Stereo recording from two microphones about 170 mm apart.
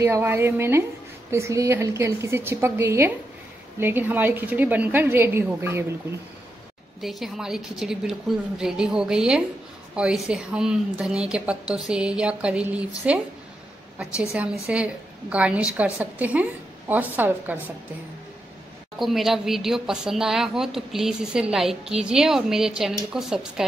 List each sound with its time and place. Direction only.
0.0 s a woman's voice: 15° right (ahead or behind)
7.0 s speech: centre (ahead or behind)
14.3 s a woman's voice: 5° right (ahead or behind)
18.9 s speech: centre (ahead or behind)